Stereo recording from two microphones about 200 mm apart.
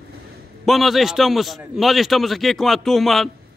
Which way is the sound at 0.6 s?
Centre (ahead or behind).